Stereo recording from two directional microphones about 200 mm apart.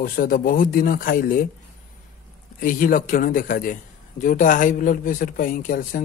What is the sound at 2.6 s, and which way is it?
A man's voice, 45° left (ahead or behind).